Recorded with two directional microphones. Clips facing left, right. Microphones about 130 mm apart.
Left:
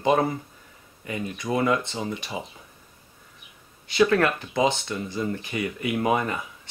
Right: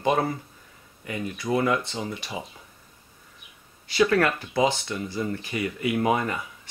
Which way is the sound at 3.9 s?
25° left (ahead or behind).